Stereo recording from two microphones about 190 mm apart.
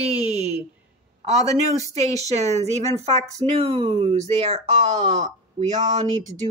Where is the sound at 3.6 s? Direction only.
30° right (ahead or behind).